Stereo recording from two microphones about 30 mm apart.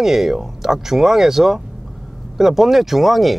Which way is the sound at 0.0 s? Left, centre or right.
Centre.